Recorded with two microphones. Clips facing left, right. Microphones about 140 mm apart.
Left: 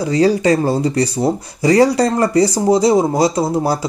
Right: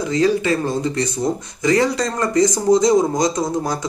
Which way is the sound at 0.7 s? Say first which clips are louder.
Left 5 dB; 35° left (ahead or behind).